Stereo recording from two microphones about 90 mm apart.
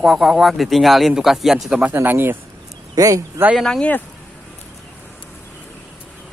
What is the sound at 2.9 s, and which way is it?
Speech, 40° right (ahead or behind).